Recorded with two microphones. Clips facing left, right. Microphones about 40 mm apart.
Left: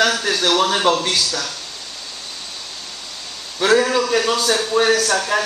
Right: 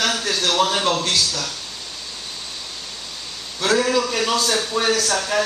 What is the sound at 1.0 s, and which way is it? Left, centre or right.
Speech, left.